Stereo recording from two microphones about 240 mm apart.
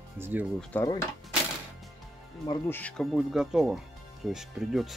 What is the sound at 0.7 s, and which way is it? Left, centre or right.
Speech, centre.